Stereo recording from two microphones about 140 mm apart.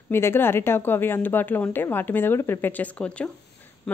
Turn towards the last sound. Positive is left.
turn(degrees=10)  # may be behind; listen again after turning